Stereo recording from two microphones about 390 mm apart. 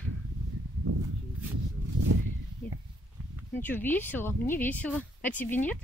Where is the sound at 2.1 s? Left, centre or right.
Right.